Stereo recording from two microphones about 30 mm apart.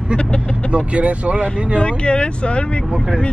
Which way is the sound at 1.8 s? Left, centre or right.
Left.